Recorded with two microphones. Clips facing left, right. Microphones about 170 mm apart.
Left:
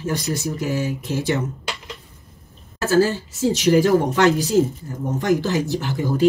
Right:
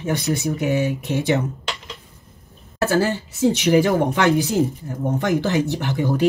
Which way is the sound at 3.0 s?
60° right (ahead or behind).